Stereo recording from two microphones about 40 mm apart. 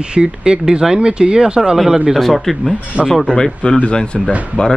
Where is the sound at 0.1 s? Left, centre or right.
Right.